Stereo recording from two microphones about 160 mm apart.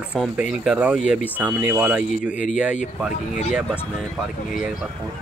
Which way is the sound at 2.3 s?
50° left (ahead or behind).